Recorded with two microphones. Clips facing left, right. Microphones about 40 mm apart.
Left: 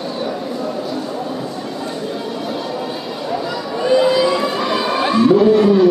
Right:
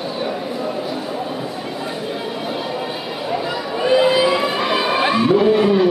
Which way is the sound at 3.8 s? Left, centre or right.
Right.